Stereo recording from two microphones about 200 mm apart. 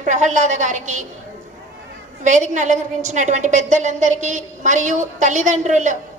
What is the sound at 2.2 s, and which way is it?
A woman's voice, 35° right (ahead or behind).